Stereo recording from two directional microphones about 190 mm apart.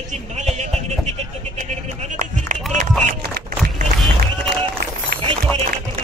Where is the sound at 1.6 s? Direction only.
40° right (ahead or behind).